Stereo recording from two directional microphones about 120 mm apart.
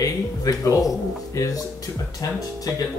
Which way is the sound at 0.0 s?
30° left (ahead or behind).